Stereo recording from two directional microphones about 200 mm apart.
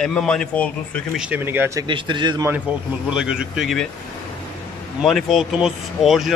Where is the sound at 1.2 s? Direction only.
10° right (ahead or behind).